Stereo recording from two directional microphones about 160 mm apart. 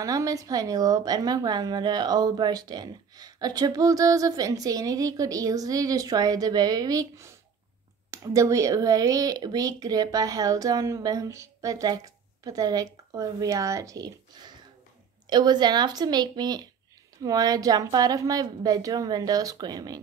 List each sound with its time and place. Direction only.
0.0 s a woman's voice: 20° right (ahead or behind)